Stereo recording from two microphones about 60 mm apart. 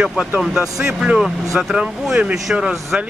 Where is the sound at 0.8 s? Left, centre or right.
Centre.